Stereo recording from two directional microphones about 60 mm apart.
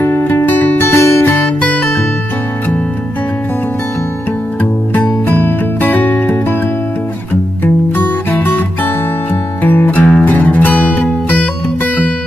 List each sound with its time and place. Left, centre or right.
0.0 s music: left
0.8 s music: left
1.3 s music: left
4.9 s music: left
7.6 s music: left